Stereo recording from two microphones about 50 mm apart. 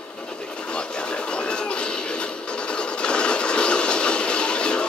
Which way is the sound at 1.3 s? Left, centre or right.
Left.